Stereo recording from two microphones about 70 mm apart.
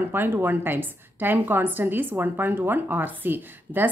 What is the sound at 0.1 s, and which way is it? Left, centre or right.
Speech, right.